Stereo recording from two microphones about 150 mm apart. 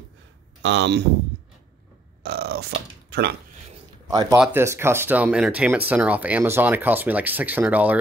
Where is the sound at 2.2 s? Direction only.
90° right.